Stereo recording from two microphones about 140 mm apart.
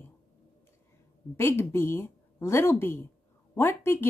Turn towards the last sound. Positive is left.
turn(degrees=20)  # may be behind; listen again after turning